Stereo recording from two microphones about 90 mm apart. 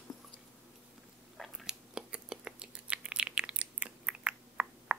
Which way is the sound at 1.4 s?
5° right (ahead or behind).